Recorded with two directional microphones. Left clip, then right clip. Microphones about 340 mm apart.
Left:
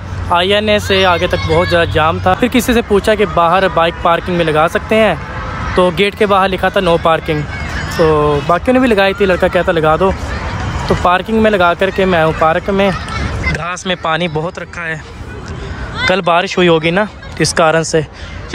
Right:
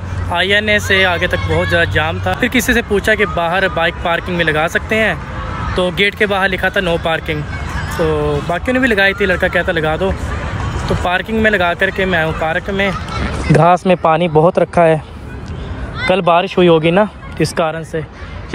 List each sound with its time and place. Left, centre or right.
0.3 s speech: centre
13.5 s speech: centre
16.1 s speech: centre